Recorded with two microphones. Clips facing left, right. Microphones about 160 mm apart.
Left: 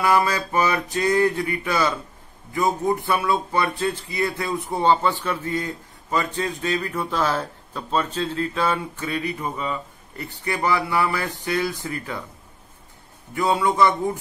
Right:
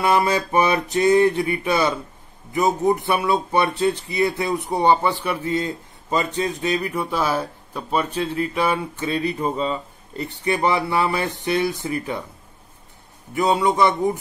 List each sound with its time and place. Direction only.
0.0 s a man's voice: 25° right (ahead or behind)
9.1 s speech: 30° right (ahead or behind)
13.3 s speech: 20° right (ahead or behind)